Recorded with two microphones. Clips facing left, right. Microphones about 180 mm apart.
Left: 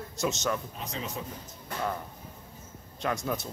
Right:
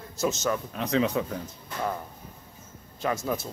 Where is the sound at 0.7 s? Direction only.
70° right (ahead or behind).